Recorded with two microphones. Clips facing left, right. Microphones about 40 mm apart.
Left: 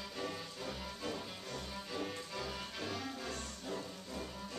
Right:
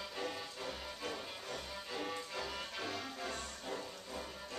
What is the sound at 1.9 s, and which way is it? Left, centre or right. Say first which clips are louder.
Music: right 1 dB; centre.